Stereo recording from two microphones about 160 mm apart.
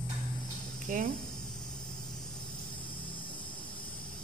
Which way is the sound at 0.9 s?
50° right (ahead or behind).